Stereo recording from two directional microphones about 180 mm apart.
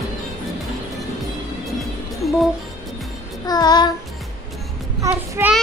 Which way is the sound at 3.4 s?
20° left (ahead or behind).